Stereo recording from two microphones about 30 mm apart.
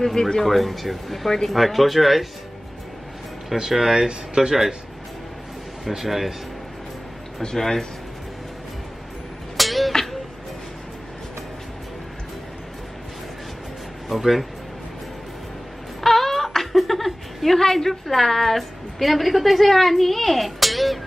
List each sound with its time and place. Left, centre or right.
0.0 s speech: centre
0.4 s a woman's voice: centre
3.5 s a woman's voice: centre
3.9 s speech: right
5.9 s a woman's voice: centre
7.5 s speech: centre
9.6 s music: centre
14.0 s speech: centre
16.0 s a sound: centre
17.6 s a woman's voice: centre